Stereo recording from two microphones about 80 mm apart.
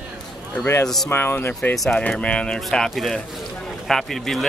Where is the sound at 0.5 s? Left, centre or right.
Left.